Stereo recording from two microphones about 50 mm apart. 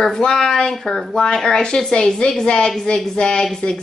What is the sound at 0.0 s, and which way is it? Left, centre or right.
Speech, centre.